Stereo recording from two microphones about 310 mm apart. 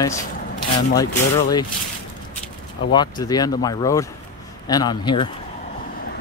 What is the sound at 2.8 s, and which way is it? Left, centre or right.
Speech, centre.